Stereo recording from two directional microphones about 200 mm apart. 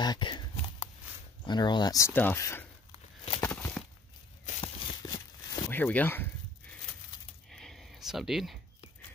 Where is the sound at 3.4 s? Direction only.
10° left (ahead or behind).